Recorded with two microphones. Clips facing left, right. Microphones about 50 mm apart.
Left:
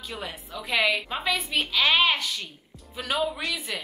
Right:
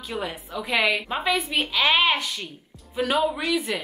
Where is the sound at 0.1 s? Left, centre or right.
Centre.